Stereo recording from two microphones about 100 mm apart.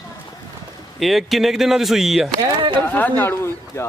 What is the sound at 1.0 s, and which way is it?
Speech, centre (ahead or behind).